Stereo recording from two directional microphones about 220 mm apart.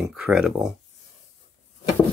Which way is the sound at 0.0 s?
5° right (ahead or behind).